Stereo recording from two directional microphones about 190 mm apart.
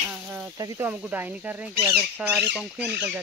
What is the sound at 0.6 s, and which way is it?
Speech, 20° right (ahead or behind).